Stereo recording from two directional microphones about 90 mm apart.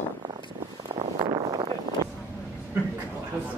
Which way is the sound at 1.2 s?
55° right (ahead or behind).